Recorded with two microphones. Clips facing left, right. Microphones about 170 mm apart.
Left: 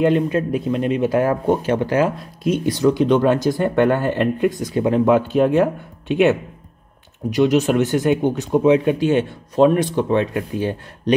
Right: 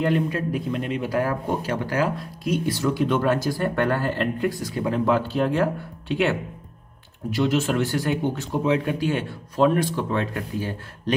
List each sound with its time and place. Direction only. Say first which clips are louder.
0.0 s speech: left 6 dB; 20° left (ahead or behind)